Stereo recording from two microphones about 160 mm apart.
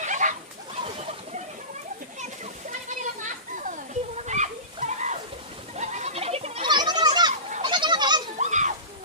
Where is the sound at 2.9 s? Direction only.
50° right (ahead or behind).